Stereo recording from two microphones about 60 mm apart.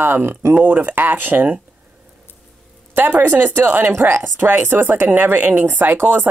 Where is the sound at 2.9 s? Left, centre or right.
Right.